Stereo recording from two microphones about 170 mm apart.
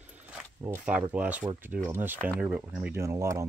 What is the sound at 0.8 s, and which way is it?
Speech, 10° right (ahead or behind).